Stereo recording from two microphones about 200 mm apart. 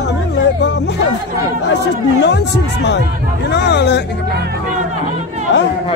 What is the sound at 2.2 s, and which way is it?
Speech, 60° left (ahead or behind).